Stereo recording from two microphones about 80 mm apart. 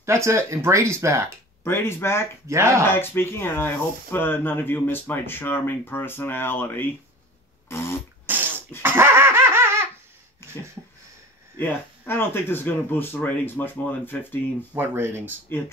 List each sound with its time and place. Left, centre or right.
0.0 s speech: right
1.6 s speech: left
2.4 s speech: right
2.9 s speech: left
7.6 s a sound: left
8.3 s a sound: right
8.8 s dog: right
10.5 s a sound: right
11.6 s speech: left
14.7 s speech: right